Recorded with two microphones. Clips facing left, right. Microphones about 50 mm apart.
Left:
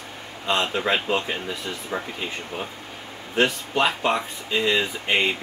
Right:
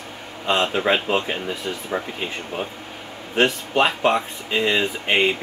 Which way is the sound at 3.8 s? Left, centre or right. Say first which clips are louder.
Right 3 dB; right.